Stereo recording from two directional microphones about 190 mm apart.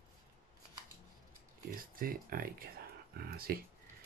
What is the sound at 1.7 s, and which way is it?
Speech, 50° right (ahead or behind).